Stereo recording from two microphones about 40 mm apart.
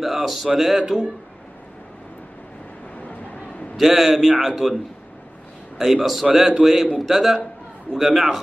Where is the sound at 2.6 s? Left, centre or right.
Left.